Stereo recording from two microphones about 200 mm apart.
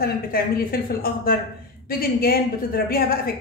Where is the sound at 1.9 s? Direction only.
50° left (ahead or behind).